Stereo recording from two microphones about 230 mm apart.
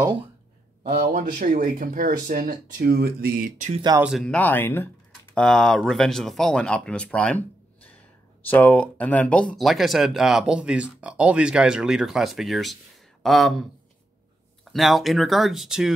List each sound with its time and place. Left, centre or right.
0.9 s speech: right
4.0 s speech: centre